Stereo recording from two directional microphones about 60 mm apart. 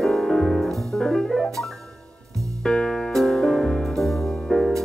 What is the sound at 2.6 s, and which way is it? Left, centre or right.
Music, centre.